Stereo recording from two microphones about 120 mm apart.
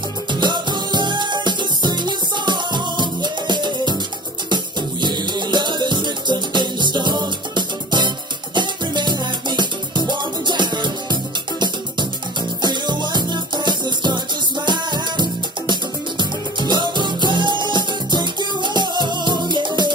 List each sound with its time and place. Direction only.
0.3 s music: 40° right (ahead or behind)